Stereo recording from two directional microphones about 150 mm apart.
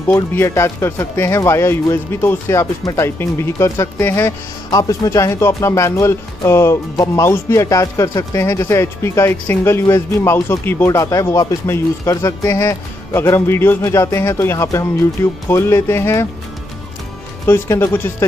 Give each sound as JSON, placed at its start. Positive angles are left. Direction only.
{"t": 0.1, "sound": "speech", "side_deg": 15}
{"t": 17.5, "sound": "speech", "side_deg": 15}